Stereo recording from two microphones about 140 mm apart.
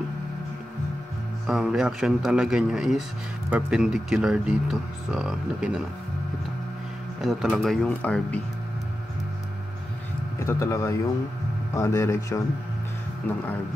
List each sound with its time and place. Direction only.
1.5 s speech: 5° right (ahead or behind)
7.2 s speech: centre (ahead or behind)
10.4 s speech: 20° left (ahead or behind)